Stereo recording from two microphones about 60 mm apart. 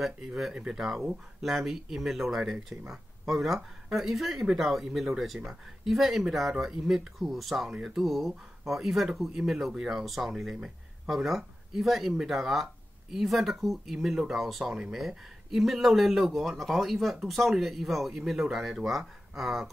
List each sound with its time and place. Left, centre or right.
0.6 s speech: centre